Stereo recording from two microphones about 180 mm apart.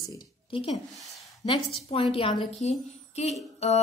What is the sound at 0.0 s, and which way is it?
A woman's voice, 25° left (ahead or behind).